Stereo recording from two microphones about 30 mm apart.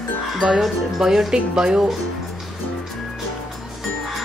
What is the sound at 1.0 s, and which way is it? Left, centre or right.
Speech, centre.